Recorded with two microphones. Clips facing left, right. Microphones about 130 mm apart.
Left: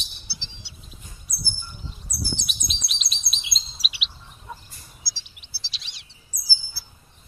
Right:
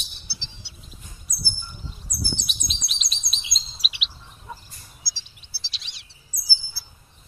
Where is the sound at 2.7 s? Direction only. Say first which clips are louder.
Even; centre (ahead or behind).